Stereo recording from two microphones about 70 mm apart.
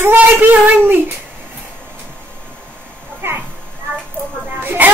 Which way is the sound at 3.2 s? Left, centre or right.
Right.